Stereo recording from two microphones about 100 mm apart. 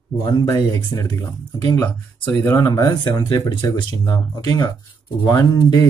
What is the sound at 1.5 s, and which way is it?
Speech, 40° left (ahead or behind).